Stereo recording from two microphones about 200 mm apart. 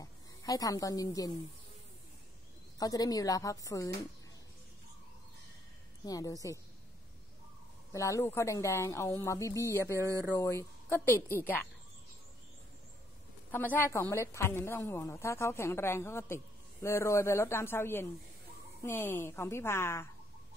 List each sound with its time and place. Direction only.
0.0 s a woman's voice: 15° left (ahead or behind)
2.8 s a woman's voice: 20° left (ahead or behind)
6.0 s a woman's voice: 15° left (ahead or behind)
7.9 s a woman's voice: 15° left (ahead or behind)
9.9 s speech: 15° right (ahead or behind)
10.3 s a woman's voice: 10° left (ahead or behind)
13.5 s a woman's voice: 10° left (ahead or behind)